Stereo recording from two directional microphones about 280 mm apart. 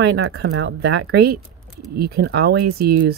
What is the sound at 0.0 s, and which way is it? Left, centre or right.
Speech, right.